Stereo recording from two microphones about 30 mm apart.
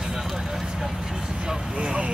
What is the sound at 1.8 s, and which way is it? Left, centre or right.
Vehicle, right.